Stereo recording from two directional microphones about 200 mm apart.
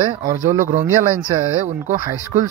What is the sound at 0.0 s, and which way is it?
Speech, 20° right (ahead or behind).